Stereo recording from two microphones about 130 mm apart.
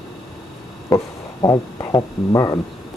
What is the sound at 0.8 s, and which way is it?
Speech, 30° left (ahead or behind).